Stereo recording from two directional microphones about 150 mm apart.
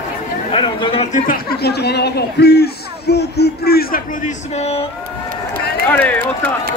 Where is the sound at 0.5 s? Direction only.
35° left (ahead or behind).